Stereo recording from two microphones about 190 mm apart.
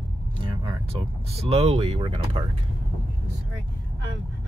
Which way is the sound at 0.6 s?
25° right (ahead or behind).